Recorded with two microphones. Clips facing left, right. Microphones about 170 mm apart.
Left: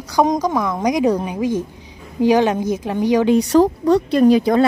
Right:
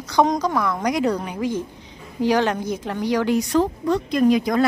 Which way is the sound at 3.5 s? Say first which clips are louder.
Left 6 dB; 40° left (ahead or behind).